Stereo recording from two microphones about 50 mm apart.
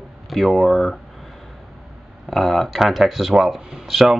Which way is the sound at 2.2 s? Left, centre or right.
Centre.